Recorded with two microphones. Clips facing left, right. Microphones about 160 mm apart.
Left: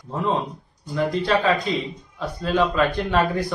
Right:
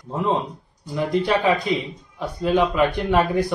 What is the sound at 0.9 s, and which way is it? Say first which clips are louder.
Speech: even; 15° right (ahead or behind).